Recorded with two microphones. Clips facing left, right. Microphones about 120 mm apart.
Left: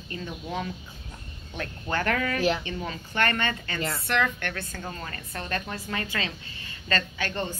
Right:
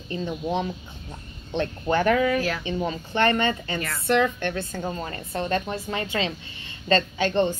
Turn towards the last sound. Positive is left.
turn(degrees=-20)  # may be behind; listen again after turning